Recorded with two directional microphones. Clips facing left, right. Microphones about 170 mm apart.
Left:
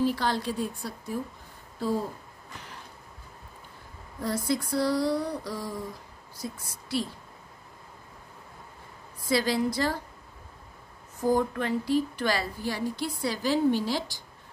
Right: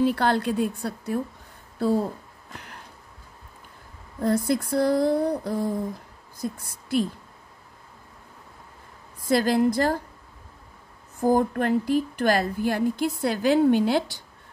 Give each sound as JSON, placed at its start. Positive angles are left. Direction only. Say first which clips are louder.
{"t": 0.0, "sound": "a woman's voice", "louder": "right 5 dB", "side_deg": -60}
{"t": 4.2, "sound": "a woman's voice", "louder": "right 6 dB", "side_deg": -55}
{"t": 9.3, "sound": "a woman's voice", "louder": "right 5 dB", "side_deg": -50}
{"t": 11.1, "sound": "a woman's voice", "louder": "right 4 dB", "side_deg": -50}